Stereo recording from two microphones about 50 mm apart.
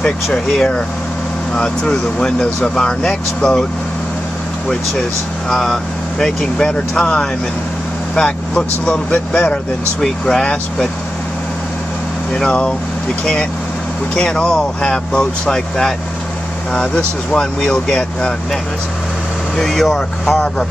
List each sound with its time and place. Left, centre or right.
0.0 s speech: centre
5.5 s speech: centre
9.9 s speech: centre
10.4 s speech: centre
12.4 s speech: centre